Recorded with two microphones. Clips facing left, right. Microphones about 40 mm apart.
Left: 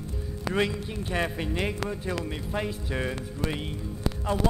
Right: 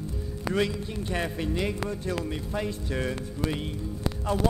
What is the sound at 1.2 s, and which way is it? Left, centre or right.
Music, centre.